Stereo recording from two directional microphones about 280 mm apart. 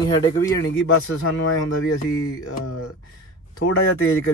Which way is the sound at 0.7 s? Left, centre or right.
Left.